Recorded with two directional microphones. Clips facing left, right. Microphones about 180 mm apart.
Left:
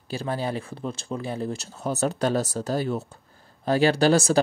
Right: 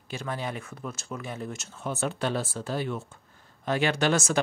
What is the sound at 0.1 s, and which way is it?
Speech, 35° left (ahead or behind).